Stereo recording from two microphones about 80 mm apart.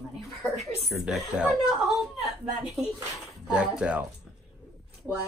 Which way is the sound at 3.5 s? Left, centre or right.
Centre.